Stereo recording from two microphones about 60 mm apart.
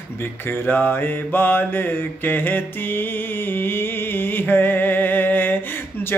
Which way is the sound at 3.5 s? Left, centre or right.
Left.